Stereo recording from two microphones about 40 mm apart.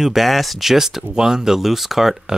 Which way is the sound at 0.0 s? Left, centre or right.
Centre.